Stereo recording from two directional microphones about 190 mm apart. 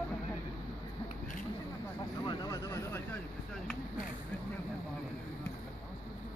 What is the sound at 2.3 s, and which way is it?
Vehicle, 20° left (ahead or behind).